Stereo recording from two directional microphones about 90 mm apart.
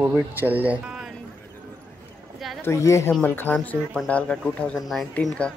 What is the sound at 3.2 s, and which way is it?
Speech, 20° left (ahead or behind).